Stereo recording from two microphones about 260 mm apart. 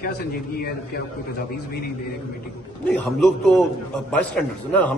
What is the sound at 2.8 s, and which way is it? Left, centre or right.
A man's voice, centre.